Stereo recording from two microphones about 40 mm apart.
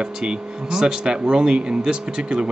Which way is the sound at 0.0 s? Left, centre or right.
Centre.